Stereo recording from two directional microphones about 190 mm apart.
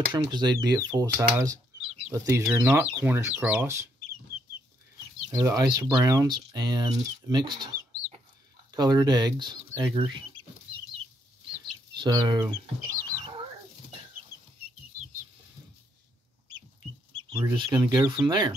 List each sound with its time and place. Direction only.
0.1 s speech: 20° right (ahead or behind)
5.4 s speech: 20° right (ahead or behind)
8.7 s speech: 20° right (ahead or behind)
12.0 s speech: 20° right (ahead or behind)
17.3 s speech: 20° right (ahead or behind)